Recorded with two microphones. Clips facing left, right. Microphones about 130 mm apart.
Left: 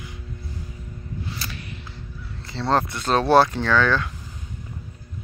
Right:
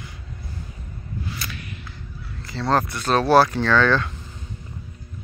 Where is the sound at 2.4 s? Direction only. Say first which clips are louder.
Even; 25° left (ahead or behind).